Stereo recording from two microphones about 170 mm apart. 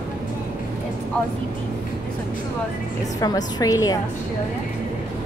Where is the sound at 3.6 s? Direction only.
20° left (ahead or behind).